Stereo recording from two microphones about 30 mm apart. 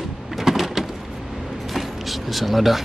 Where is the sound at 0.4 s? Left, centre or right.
Centre.